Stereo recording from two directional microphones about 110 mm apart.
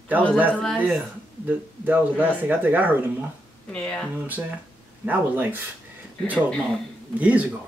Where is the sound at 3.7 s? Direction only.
10° left (ahead or behind).